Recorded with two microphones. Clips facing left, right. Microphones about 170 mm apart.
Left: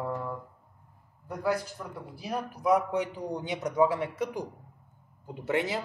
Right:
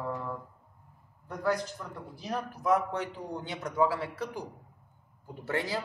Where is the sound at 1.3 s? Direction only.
10° left (ahead or behind).